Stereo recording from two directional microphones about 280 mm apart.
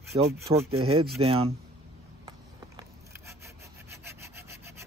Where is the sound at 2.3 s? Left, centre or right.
Centre.